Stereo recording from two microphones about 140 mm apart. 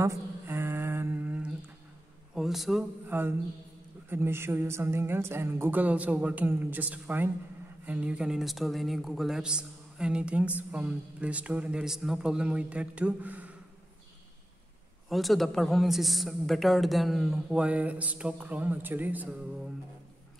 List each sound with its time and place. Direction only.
0.0 s a sound: 15° right (ahead or behind)
2.3 s a man's voice: centre (ahead or behind)
3.1 s speech: 15° right (ahead or behind)
15.0 s a man's voice: centre (ahead or behind)